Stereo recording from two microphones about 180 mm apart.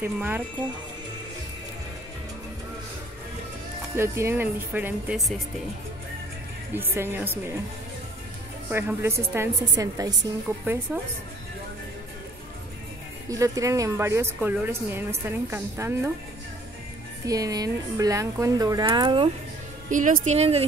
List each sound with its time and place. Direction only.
0.0 s speech: 10° right (ahead or behind)
3.9 s speech: 15° right (ahead or behind)
6.7 s speech: 10° right (ahead or behind)
8.6 s speech: 10° right (ahead or behind)
13.3 s speech: 20° right (ahead or behind)
17.3 s speech: 20° right (ahead or behind)
19.9 s speech: 50° right (ahead or behind)